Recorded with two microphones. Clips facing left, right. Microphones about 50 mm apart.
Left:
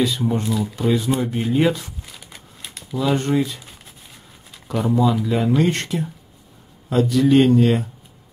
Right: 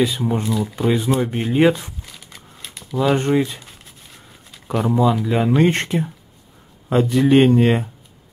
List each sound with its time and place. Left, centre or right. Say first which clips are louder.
0.2 s speech: right 1 dB; centre
0.7 s speech: right 2 dB; right
2.0 s crumpling: even; centre
3.2 s speech: right 2 dB; right
4.6 s speech: right 1 dB; centre